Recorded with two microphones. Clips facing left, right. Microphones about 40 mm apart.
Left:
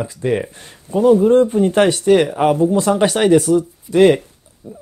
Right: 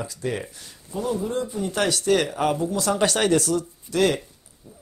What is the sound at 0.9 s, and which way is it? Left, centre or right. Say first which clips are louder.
Speech: left 15 dB; left.